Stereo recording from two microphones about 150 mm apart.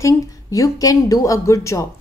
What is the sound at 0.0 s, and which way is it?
Speech, 25° left (ahead or behind).